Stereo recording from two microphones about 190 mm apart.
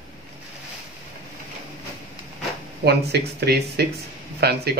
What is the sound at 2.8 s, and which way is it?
Speech, 60° right (ahead or behind).